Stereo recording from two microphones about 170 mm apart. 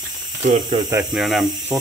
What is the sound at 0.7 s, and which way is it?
Speech, 20° right (ahead or behind).